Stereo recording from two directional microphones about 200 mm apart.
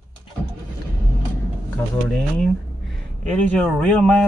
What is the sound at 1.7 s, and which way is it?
Speech, centre (ahead or behind).